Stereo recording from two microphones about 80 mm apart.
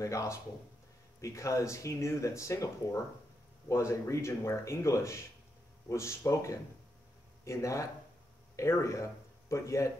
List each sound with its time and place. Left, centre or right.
0.0 s a man's voice: left